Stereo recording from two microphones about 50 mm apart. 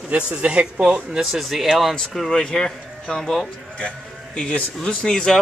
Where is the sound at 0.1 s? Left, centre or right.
Right.